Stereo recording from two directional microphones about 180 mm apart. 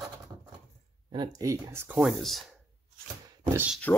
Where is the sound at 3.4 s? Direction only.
15° right (ahead or behind).